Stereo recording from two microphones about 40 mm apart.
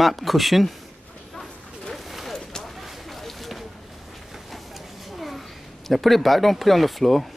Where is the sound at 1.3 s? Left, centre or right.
Centre.